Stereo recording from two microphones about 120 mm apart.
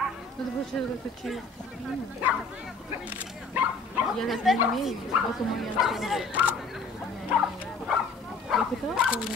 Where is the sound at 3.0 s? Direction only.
15° right (ahead or behind).